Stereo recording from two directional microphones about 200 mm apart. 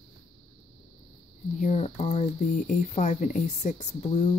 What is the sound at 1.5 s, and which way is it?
Speech, 35° left (ahead or behind).